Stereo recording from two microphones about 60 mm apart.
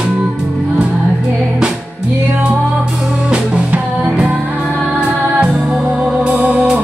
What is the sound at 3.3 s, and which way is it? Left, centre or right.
Music, right.